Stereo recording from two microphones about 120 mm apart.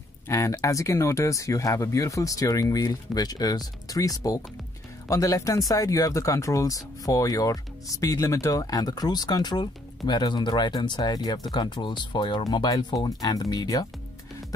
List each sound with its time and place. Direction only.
0.3 s speech: 25° left (ahead or behind)